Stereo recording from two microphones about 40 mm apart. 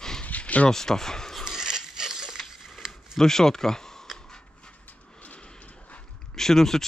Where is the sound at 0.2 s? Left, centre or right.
Left.